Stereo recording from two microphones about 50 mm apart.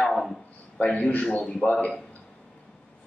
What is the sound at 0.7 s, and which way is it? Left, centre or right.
A man's voice, left.